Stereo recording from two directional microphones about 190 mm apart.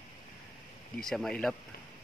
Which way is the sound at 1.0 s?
Centre (ahead or behind).